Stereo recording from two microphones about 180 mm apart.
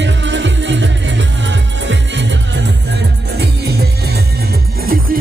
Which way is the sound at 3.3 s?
60° right (ahead or behind).